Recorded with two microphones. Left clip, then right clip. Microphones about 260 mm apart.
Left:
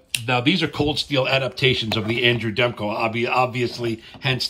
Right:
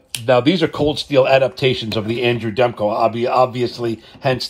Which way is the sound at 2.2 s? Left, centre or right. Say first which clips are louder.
Right 3 dB; left.